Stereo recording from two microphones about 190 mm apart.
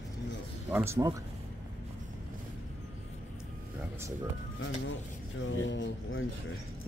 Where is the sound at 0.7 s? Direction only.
15° right (ahead or behind).